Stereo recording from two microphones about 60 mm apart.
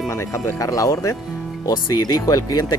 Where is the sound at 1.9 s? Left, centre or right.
Left.